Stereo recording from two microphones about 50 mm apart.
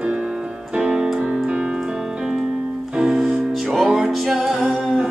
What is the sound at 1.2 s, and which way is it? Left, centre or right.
Piano, right.